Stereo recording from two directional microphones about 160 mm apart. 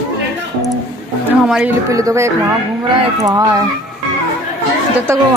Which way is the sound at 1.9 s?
20° right (ahead or behind).